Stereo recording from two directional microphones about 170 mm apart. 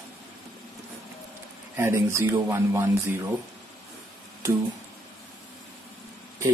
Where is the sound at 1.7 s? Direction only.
15° right (ahead or behind).